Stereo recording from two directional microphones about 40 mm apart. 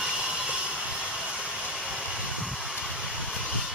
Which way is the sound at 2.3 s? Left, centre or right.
Centre.